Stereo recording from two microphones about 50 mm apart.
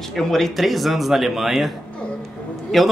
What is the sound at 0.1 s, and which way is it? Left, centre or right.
Speech, centre.